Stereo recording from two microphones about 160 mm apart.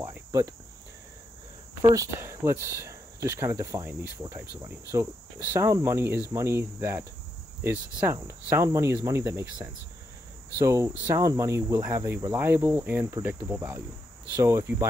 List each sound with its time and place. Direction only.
0.0 s cricket: 15° right (ahead or behind)
1.8 s speech: 25° right (ahead or behind)
2.1 s cricket: 15° right (ahead or behind)
5.5 s cricket: 15° right (ahead or behind)